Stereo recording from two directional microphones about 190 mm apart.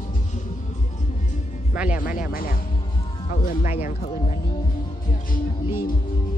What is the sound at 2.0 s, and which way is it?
Speech, 45° left (ahead or behind).